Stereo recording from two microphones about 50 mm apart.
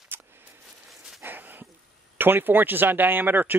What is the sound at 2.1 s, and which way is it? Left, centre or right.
Speech, right.